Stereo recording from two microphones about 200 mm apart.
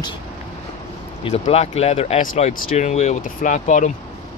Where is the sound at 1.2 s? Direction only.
30° left (ahead or behind).